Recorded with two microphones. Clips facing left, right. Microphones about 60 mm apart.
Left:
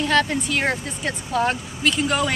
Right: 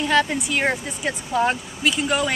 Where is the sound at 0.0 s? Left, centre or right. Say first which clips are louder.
Even; centre.